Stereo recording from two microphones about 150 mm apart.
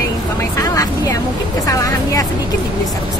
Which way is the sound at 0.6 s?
20° left (ahead or behind).